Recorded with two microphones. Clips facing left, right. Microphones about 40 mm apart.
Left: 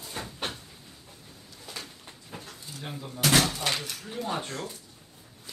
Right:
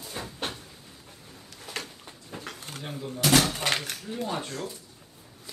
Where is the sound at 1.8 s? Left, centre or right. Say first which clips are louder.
Right 5 dB; right.